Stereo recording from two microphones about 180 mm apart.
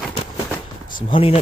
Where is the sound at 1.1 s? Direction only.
30° left (ahead or behind).